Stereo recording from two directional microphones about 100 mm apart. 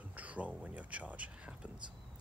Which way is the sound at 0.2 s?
15° right (ahead or behind).